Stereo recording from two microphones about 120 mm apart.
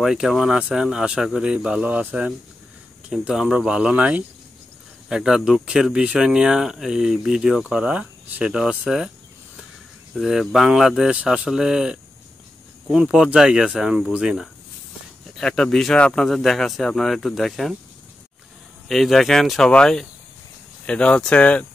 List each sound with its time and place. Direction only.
0.0 s speech: 5° right (ahead or behind)
10.1 s speech: centre (ahead or behind)
18.9 s speech: centre (ahead or behind)